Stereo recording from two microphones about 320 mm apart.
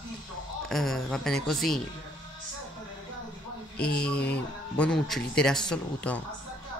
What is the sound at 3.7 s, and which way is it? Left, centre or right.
Mantra, left.